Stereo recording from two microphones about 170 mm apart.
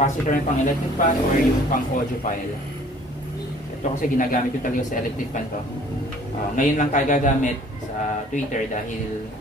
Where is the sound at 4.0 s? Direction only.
50° left (ahead or behind).